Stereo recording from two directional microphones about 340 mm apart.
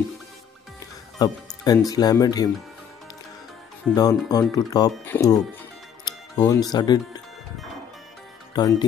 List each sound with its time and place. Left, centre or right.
0.7 s speech: centre
3.8 s speech: centre
8.5 s speech: centre